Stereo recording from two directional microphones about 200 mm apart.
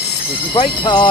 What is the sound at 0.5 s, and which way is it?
Speech, 25° left (ahead or behind).